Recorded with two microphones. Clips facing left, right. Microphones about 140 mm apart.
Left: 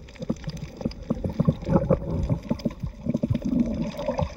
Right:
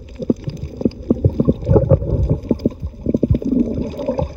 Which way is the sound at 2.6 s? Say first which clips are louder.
Right 9 dB; 30° right (ahead or behind).